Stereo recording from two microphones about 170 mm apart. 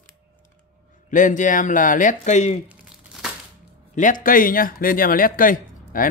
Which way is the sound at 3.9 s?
50° left (ahead or behind).